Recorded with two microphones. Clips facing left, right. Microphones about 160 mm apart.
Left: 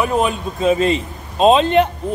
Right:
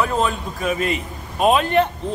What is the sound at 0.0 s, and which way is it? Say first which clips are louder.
A man's voice: left 3 dB; 15° left (ahead or behind).